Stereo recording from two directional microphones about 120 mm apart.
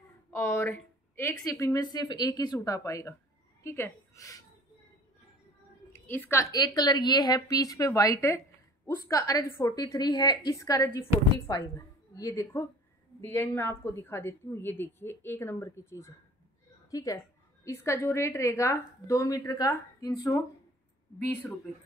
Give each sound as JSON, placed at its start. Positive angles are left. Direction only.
{"t": 0.3, "sound": "a woman's voice", "side_deg": 20}
{"t": 5.9, "sound": "a woman's voice", "side_deg": 20}
{"t": 6.5, "sound": "a woman's voice", "side_deg": 35}